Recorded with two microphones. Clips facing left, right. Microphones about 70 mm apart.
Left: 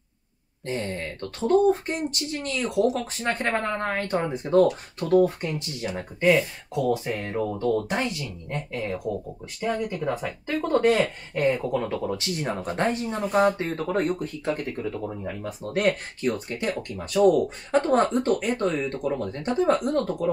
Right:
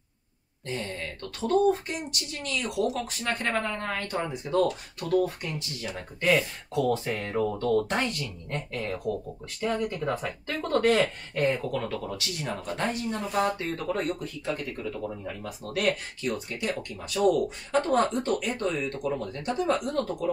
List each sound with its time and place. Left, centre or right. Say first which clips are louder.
0.7 s speech: left 4 dB; left
6.2 s speech: left 4 dB; centre
9.6 s speech: left 1 dB; centre; by 12.2 s left
12.4 s speech: left 3 dB; left